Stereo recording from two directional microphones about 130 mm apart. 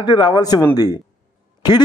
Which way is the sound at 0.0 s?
35° left (ahead or behind).